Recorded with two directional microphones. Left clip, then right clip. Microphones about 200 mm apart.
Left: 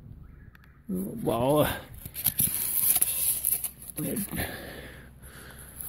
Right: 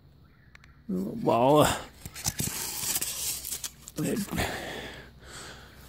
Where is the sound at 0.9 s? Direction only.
20° right (ahead or behind).